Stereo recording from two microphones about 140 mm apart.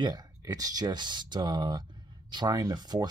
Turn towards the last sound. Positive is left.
turn(degrees=-30)  # may be behind; listen again after turning